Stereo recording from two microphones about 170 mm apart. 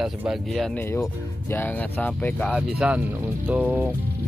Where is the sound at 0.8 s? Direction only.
15° left (ahead or behind).